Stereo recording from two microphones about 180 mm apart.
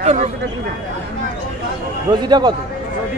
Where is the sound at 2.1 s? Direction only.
25° right (ahead or behind).